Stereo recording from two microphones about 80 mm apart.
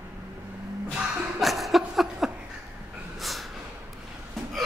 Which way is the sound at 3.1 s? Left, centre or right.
Centre.